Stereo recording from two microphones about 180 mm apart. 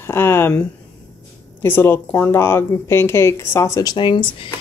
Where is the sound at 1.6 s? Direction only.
10° left (ahead or behind).